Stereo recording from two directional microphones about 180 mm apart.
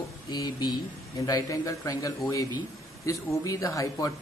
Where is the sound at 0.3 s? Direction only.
20° left (ahead or behind).